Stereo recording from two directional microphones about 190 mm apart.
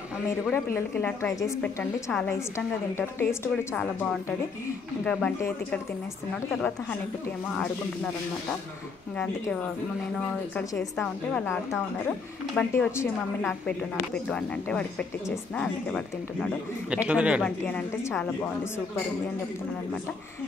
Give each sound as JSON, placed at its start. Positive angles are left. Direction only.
{"t": 0.3, "sound": "a woman's voice", "side_deg": 15}
{"t": 7.5, "sound": "a woman's voice", "side_deg": 5}
{"t": 10.5, "sound": "a woman's voice", "side_deg": 15}
{"t": 10.8, "sound": "a woman's voice", "side_deg": 5}
{"t": 13.4, "sound": "a woman's voice", "side_deg": 0}
{"t": 17.4, "sound": "a woman's voice", "side_deg": 5}